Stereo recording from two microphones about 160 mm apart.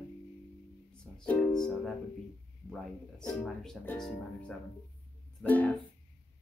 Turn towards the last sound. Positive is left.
turn(degrees=10)  # may be behind; listen again after turning